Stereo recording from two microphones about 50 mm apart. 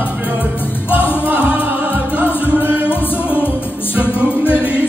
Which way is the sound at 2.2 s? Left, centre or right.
Left.